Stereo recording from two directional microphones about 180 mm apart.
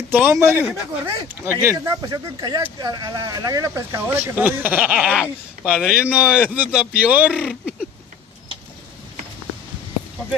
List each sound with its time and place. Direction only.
0.1 s speech: 15° right (ahead or behind)